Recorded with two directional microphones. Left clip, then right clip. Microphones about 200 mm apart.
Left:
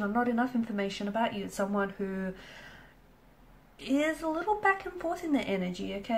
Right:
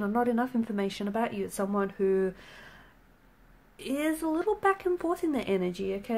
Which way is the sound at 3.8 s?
45° right (ahead or behind).